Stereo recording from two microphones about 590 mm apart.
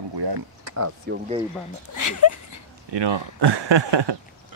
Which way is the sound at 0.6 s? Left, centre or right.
Right.